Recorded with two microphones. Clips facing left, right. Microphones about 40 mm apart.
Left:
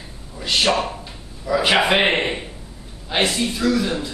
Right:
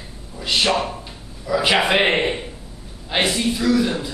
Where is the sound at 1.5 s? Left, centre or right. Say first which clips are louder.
Left 1 dB; centre.